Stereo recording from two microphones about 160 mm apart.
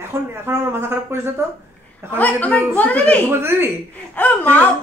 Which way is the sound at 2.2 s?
10° left (ahead or behind).